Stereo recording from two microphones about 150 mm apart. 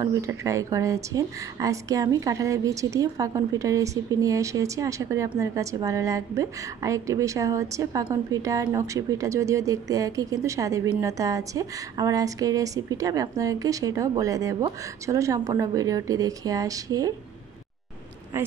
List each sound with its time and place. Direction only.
0.0 s a woman's voice: 20° right (ahead or behind)